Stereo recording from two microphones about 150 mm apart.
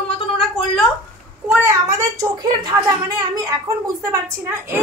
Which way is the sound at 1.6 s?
20° right (ahead or behind).